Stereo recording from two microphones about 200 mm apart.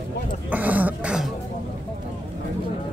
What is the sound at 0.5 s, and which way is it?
Throat clearing, 10° right (ahead or behind).